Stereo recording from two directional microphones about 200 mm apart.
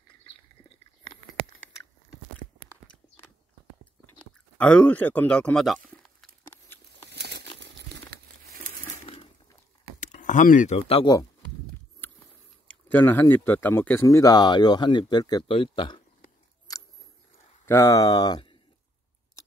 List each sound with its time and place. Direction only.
4.6 s speech: 5° left (ahead or behind)
7.1 s crumpling: 55° right (ahead or behind)
9.9 s speech: 40° left (ahead or behind)
12.0 s a sound: 10° left (ahead or behind)
12.6 s speech: 10° left (ahead or behind); by 16.0 s 25° left (ahead or behind)
16.7 s scissors: 20° left (ahead or behind)
17.6 s speech: 15° left (ahead or behind)